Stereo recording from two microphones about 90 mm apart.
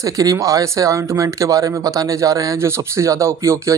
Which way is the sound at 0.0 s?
40° right (ahead or behind).